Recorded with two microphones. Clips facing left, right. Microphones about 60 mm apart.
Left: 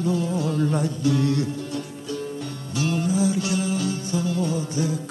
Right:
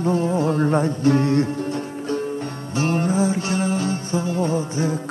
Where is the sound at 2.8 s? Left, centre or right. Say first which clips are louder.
Right 3 dB; right.